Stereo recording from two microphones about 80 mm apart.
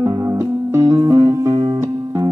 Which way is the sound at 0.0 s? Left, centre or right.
Right.